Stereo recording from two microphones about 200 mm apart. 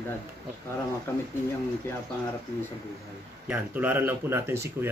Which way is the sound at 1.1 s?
15° left (ahead or behind).